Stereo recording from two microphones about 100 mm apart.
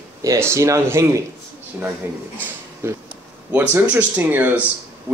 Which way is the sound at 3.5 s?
20° right (ahead or behind).